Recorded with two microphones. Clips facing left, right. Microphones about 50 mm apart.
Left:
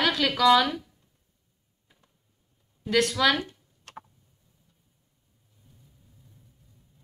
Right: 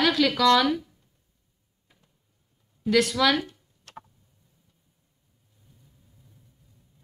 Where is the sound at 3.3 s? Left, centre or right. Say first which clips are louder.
Right 2 dB; left.